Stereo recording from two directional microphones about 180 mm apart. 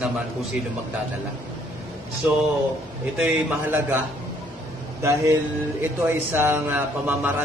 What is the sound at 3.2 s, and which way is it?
A man's voice, 10° right (ahead or behind).